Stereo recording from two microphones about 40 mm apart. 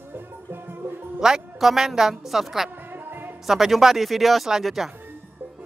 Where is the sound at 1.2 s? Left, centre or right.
Centre.